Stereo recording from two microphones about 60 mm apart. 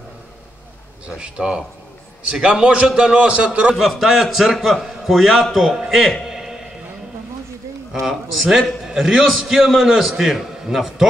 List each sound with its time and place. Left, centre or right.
1.0 s a man's voice: centre
3.7 s a man's voice: centre
6.2 s a sound: centre
7.9 s a man's voice: centre